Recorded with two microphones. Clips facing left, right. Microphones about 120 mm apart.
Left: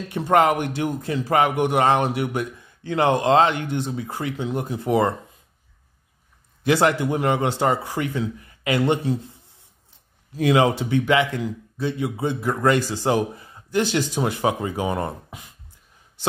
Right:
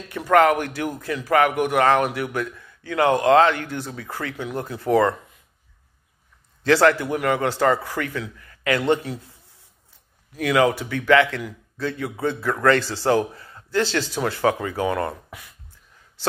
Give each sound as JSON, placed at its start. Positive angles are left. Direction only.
{"t": 0.1, "sound": "a man's voice", "side_deg": 20}
{"t": 6.6, "sound": "a man's voice", "side_deg": 20}